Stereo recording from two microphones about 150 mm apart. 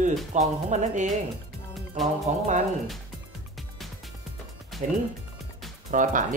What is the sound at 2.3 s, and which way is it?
Speech, 50° right (ahead or behind).